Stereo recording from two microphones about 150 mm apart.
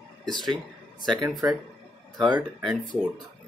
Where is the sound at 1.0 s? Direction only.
30° right (ahead or behind).